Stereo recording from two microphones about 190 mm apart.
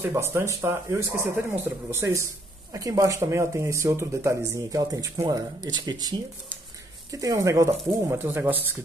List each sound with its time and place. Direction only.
0.1 s speech: 15° right (ahead or behind)